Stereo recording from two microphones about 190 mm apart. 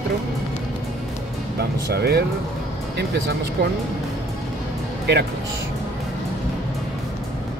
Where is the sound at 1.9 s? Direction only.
55° right (ahead or behind).